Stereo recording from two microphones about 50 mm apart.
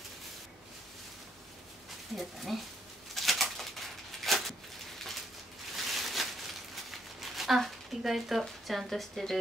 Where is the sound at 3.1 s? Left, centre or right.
Centre.